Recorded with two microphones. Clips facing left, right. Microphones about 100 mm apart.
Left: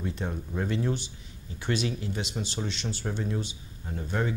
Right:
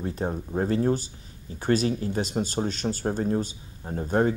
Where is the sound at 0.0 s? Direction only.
40° right (ahead or behind).